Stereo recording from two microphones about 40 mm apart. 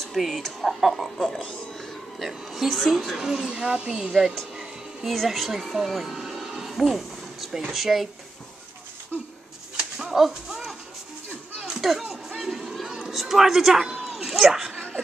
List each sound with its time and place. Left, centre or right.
0.2 s a woman's voice: centre
2.1 s a woman's voice: centre
3.4 s speech: right
5.0 s speech: centre
10.0 s speech: centre
11.6 s music: centre
12.4 s a sound: centre
14.7 s a sound: left